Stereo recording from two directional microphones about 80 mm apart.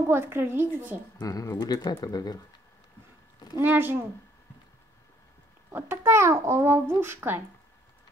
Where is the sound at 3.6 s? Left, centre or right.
Right.